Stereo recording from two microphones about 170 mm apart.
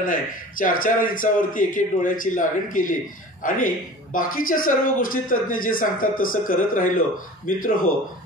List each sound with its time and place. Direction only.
0.0 s speech: 55° left (ahead or behind)